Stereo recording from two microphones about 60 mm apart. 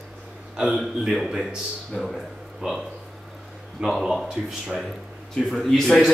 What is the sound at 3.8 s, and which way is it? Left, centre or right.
A man's voice, centre.